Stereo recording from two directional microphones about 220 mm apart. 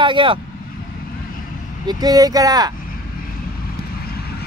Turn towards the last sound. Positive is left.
turn(degrees=-15)  # may be behind; listen again after turning